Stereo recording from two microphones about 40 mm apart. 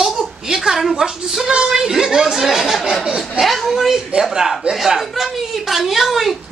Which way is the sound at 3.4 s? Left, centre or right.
Centre.